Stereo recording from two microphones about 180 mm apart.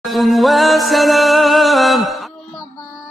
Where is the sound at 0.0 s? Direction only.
Centre (ahead or behind).